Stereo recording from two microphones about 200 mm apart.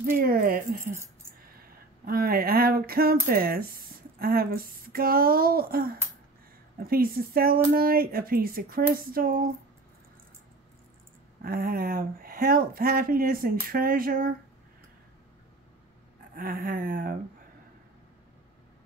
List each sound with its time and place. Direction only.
0.0 s speech: 45° right (ahead or behind)
1.6 s a sound: 50° right (ahead or behind)
3.3 s speech: 50° right (ahead or behind)
11.4 s speech: 45° right (ahead or behind)
16.3 s speech: 45° right (ahead or behind)